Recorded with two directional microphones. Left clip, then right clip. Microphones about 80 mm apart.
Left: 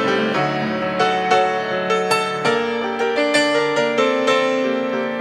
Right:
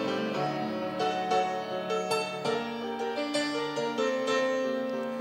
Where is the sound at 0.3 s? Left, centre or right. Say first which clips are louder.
Left 11 dB; right.